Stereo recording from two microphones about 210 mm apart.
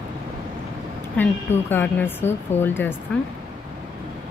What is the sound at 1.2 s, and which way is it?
Speech, 10° left (ahead or behind).